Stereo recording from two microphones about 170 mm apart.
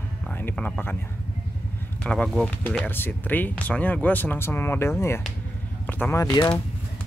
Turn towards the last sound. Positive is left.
turn(degrees=20)  # may be behind; listen again after turning